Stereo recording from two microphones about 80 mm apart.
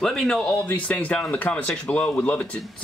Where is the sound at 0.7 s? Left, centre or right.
Centre.